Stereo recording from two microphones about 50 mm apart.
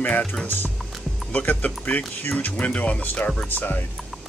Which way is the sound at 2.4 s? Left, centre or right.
Left.